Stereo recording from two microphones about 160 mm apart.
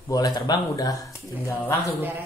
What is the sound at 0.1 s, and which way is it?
A woman's voice, 25° left (ahead or behind).